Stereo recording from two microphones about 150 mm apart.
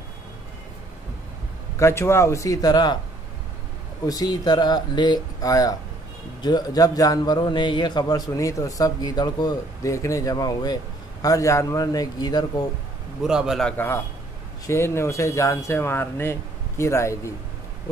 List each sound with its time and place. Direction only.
1.8 s a man's voice: 20° left (ahead or behind)
4.0 s a man's voice: 25° left (ahead or behind)
13.2 s a man's voice: 5° right (ahead or behind); by 17.3 s 20° left (ahead or behind)